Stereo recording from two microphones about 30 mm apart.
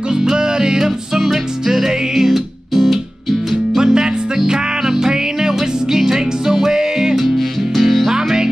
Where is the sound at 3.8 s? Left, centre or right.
Right.